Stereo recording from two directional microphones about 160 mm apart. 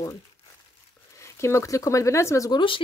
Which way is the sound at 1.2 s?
15° left (ahead or behind).